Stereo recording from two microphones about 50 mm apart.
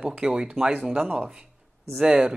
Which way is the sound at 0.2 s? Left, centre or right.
Centre.